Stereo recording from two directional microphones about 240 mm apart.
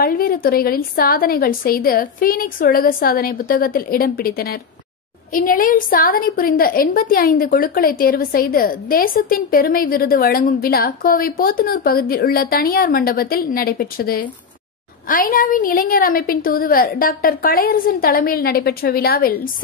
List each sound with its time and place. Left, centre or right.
0.0 s a woman's voice: left